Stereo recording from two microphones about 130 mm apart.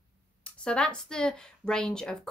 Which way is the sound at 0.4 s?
10° left (ahead or behind).